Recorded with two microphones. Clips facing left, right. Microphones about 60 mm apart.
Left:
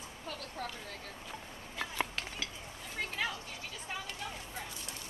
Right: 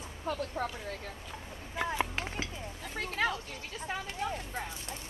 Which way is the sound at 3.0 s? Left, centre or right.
Right.